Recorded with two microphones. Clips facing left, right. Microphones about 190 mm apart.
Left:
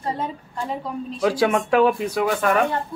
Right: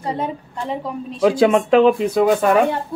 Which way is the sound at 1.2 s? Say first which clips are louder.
Right 6 dB; 25° right (ahead or behind).